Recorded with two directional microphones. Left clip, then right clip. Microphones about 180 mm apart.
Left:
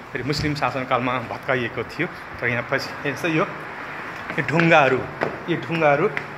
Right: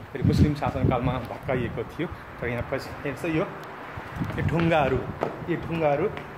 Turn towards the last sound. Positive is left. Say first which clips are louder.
# left 6 dB
turn(degrees=15)  # may be behind; listen again after turning